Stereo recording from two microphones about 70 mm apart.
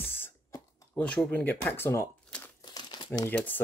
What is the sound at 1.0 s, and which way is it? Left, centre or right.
Speech, centre.